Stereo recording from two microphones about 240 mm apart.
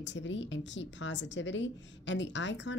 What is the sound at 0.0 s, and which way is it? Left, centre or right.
A woman's voice, left.